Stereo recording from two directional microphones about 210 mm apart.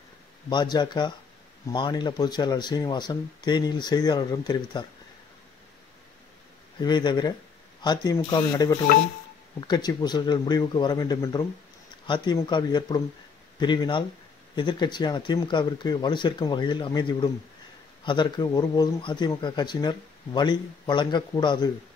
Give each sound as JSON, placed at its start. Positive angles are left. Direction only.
{"t": 0.5, "sound": "speech", "side_deg": 20}
{"t": 6.8, "sound": "speech", "side_deg": 20}